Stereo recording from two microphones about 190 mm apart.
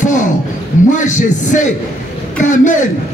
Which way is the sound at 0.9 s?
40° left (ahead or behind).